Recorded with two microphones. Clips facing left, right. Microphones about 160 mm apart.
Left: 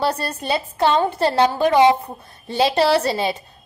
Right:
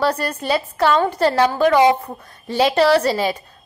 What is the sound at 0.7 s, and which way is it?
A woman's voice, 25° left (ahead or behind).